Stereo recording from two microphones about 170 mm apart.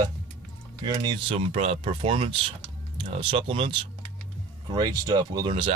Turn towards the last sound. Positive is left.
turn(degrees=-30)  # may be behind; listen again after turning